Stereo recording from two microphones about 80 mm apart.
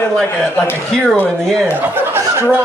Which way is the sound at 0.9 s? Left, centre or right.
Centre.